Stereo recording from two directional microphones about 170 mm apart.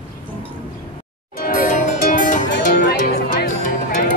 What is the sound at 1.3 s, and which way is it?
Music, 55° left (ahead or behind).